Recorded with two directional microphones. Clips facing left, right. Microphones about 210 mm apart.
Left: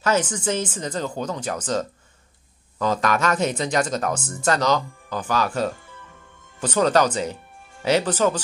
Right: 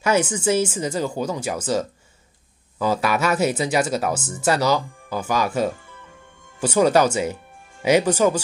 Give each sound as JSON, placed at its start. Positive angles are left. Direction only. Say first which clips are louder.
{"t": 0.0, "sound": "speech", "louder": "right 2 dB", "side_deg": -10}